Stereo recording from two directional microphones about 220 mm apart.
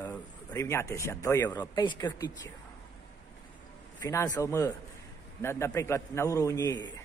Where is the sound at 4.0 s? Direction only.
15° left (ahead or behind).